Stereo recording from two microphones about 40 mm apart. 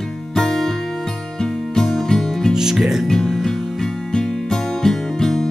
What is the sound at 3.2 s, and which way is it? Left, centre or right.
Music, centre.